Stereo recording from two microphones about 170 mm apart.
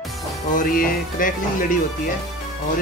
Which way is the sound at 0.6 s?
55° left (ahead or behind).